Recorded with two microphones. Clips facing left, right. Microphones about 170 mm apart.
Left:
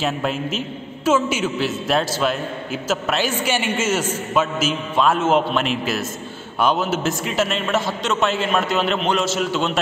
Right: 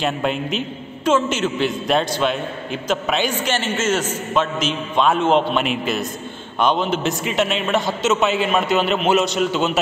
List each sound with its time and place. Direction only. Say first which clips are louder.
0.0 s a man's voice: right 1 dB; centre (ahead or behind)